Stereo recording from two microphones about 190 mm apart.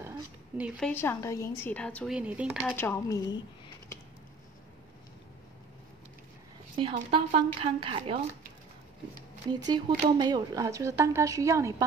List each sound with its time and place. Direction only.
0.7 s a woman's voice: 10° left (ahead or behind)
2.1 s speech: 5° right (ahead or behind)
2.7 s a woman's voice: 10° left (ahead or behind)
6.8 s a woman's voice: 25° right (ahead or behind)
9.5 s speech: 20° right (ahead or behind)